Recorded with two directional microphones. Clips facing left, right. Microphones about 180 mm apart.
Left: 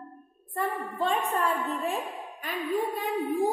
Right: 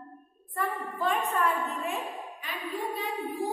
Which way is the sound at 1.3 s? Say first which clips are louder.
Left 1 dB; 30° left (ahead or behind).